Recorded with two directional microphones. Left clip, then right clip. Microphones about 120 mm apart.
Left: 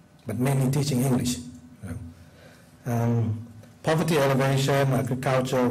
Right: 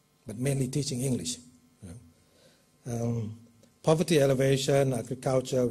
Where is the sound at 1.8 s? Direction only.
45° right (ahead or behind).